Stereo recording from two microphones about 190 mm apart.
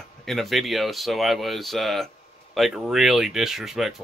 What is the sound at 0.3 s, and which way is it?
Speech, centre (ahead or behind).